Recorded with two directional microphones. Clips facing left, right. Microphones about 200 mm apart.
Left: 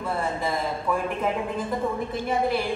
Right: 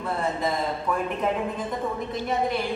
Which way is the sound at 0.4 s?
Centre (ahead or behind).